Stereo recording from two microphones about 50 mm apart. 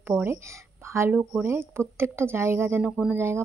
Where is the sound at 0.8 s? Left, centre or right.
Right.